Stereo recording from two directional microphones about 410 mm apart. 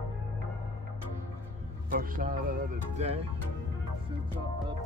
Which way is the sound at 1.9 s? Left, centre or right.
Centre.